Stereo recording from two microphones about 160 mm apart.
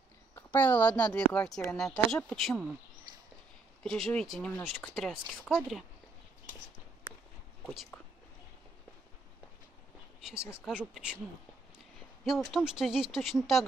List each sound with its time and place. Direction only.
0.4 s speech: 10° left (ahead or behind)
3.8 s speech: 5° left (ahead or behind)
7.6 s speech: centre (ahead or behind)
10.2 s speech: 5° right (ahead or behind)
12.3 s speech: centre (ahead or behind)